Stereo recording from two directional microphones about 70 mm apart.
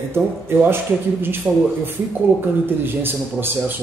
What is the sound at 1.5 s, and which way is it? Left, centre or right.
A man's voice, right.